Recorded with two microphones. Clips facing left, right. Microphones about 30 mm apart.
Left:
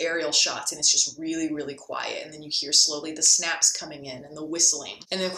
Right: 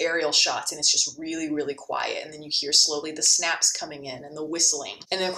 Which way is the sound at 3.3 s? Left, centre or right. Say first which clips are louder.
Right 1 dB; centre.